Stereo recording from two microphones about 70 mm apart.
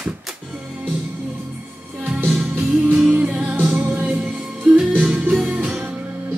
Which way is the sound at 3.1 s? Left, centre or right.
Centre.